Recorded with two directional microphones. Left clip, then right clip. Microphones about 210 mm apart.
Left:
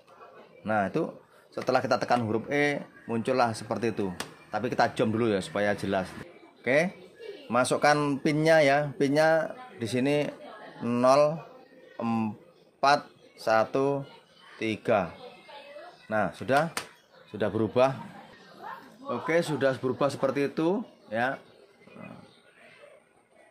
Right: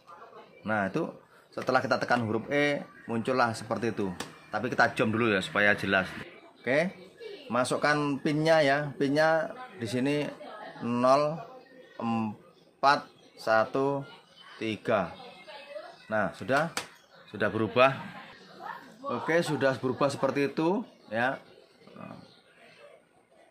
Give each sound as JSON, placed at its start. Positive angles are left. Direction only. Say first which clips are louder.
{"t": 0.7, "sound": "speech", "louder": "left 2 dB", "side_deg": 10}
{"t": 16.1, "sound": "speech", "louder": "left 2 dB", "side_deg": 20}
{"t": 19.0, "sound": "speech", "louder": "left 1 dB", "side_deg": 5}